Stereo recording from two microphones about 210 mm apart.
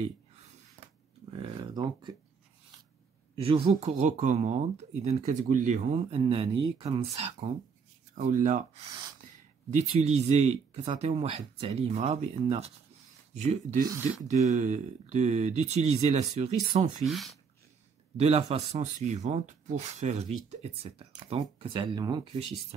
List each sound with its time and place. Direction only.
1.6 s speech: 20° right (ahead or behind)
3.3 s speech: 25° right (ahead or behind)
9.7 s speech: 30° right (ahead or behind)
13.8 s speech: 10° right (ahead or behind)
14.2 s speech: 35° right (ahead or behind)
17.0 s speech: centre (ahead or behind)
18.1 s speech: 30° right (ahead or behind)